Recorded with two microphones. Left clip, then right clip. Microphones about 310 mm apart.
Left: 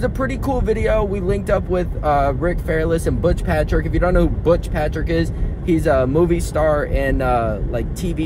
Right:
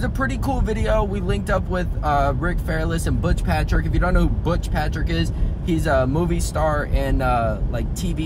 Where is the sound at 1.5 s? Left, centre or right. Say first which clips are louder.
Left 3 dB; right.